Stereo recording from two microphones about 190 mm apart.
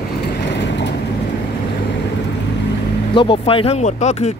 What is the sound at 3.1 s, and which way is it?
Speech, 25° left (ahead or behind).